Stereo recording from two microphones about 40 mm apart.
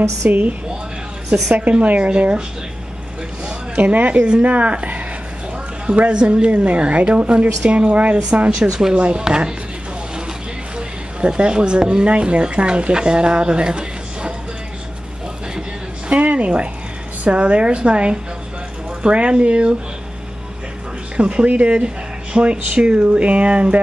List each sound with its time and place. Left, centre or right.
0.3 s speech: right
3.7 s speech: right
6.1 s a woman's voice: right
8.5 s speech: centre
8.9 s a woman's voice: right
11.1 s a woman's voice: right
16.1 s a woman's voice: right
21.2 s a woman's voice: right